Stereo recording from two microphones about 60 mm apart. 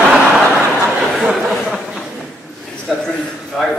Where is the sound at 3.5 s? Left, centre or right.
Centre.